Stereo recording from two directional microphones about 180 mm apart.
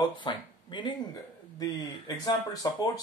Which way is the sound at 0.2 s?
25° left (ahead or behind).